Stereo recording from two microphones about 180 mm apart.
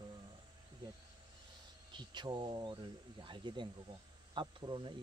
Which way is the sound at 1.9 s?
25° right (ahead or behind).